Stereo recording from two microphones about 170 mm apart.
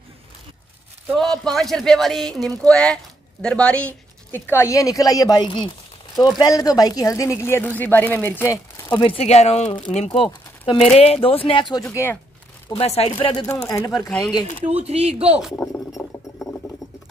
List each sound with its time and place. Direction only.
1.1 s speech: centre (ahead or behind); by 5.7 s 25° left (ahead or behind)
6.1 s speech: centre (ahead or behind)
6.4 s speech: 20° left (ahead or behind)
8.8 s speech: 30° left (ahead or behind)
11.9 s speech: 15° left (ahead or behind)
12.8 s speech: 35° left (ahead or behind); by 14.0 s 20° left (ahead or behind)
14.0 s speech: 5° left (ahead or behind)
14.6 s speech: 40° right (ahead or behind)
15.5 s speech: 10° left (ahead or behind)